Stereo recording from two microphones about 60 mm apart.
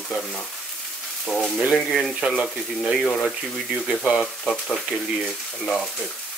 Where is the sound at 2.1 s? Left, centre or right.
Centre.